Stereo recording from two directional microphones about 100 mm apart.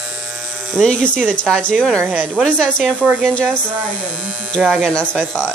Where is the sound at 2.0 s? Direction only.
15° right (ahead or behind).